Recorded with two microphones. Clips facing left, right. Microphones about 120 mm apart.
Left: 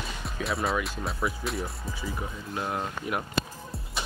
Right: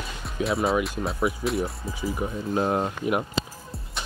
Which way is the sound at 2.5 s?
30° right (ahead or behind).